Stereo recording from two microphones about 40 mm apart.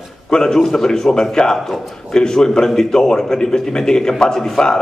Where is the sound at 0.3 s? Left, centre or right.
Centre.